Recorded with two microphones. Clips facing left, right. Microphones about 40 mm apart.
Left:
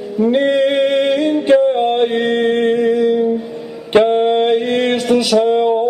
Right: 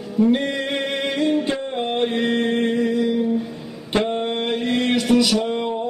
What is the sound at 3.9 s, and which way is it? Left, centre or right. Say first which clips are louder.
Mantra: left 10 dB; left.